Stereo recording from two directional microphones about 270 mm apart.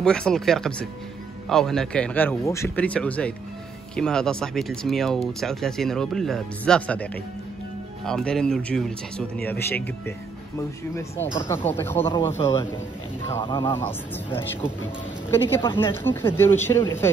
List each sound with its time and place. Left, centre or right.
0.0 s speech: centre
11.0 s speech: centre
15.3 s speech: centre